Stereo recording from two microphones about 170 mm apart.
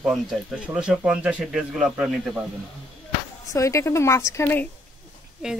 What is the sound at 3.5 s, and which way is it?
Speech, 20° left (ahead or behind).